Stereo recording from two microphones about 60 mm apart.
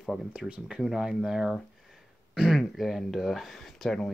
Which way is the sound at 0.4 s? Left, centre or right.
Centre.